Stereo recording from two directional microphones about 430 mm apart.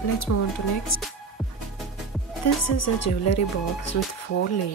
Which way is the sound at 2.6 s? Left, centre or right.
Left.